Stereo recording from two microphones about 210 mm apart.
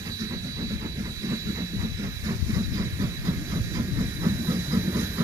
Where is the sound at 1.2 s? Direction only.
15° right (ahead or behind).